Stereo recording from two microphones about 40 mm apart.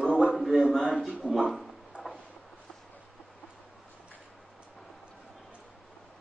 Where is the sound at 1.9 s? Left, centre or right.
Right.